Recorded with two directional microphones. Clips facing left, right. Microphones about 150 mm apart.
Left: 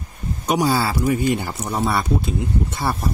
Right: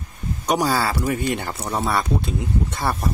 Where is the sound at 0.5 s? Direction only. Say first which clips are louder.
Left 1 dB; 5° left (ahead or behind).